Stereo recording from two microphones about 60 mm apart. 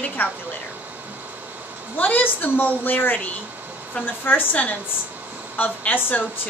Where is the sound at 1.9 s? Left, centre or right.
Left.